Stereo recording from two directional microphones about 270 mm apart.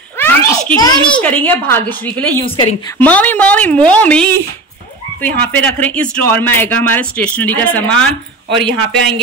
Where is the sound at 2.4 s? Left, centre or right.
Centre.